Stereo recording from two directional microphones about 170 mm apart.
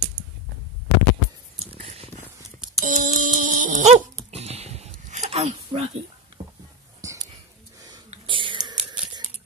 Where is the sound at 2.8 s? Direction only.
50° right (ahead or behind).